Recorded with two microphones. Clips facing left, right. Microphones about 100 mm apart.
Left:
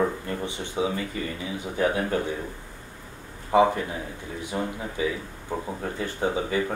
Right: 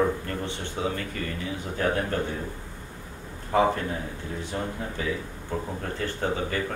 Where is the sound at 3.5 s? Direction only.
15° left (ahead or behind).